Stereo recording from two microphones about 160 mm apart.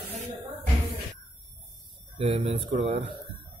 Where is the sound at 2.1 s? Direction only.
35° right (ahead or behind).